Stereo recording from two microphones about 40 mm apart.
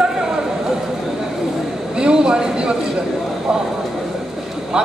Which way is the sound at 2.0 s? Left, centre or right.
Right.